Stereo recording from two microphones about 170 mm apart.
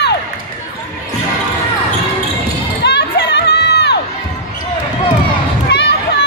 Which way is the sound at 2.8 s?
90° left.